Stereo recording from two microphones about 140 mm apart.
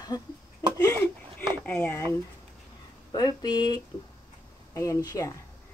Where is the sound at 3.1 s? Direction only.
30° left (ahead or behind).